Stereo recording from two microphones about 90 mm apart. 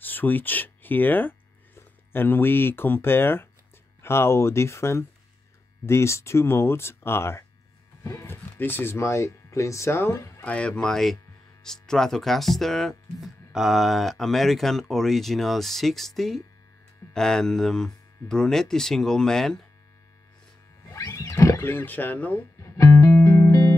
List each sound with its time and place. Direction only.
0.0 s speech: 20° left (ahead or behind)
8.5 s speech: 25° left (ahead or behind)
10.4 s speech: 15° left (ahead or behind)
21.1 s speech: 35° left (ahead or behind); by 22.4 s 20° left (ahead or behind)
22.6 s music: 35° left (ahead or behind)